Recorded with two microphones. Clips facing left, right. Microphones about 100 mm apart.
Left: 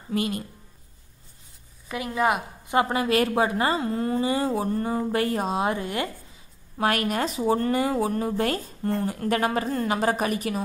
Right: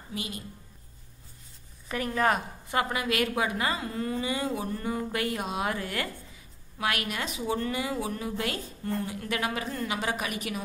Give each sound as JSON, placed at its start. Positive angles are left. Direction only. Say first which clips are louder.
{"t": 0.1, "sound": "a woman's voice", "louder": "left 11 dB", "side_deg": 55}
{"t": 1.9, "sound": "a woman's voice", "louder": "left 2 dB", "side_deg": 10}
{"t": 2.8, "sound": "speech", "louder": "left 6 dB", "side_deg": 35}
{"t": 6.8, "sound": "speech", "louder": "left 7 dB", "side_deg": 40}